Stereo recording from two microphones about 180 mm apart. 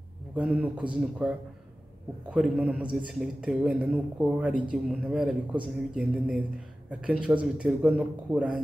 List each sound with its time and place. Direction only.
0.4 s a man's voice: 5° right (ahead or behind)
2.3 s a man's voice: 5° right (ahead or behind)